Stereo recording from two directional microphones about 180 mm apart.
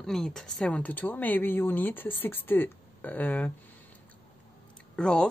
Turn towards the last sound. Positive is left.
turn(degrees=5)  # may be behind; listen again after turning